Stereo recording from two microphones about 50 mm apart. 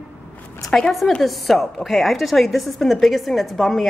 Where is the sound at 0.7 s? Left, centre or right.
Centre.